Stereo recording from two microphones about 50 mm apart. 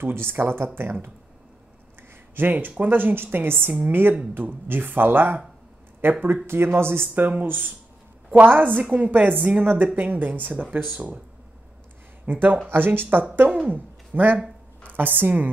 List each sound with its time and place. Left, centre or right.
0.0 s a woman's voice: right
2.0 s a sound: right
2.8 s a woman's voice: right
7.2 s speech: right
12.3 s a woman's voice: right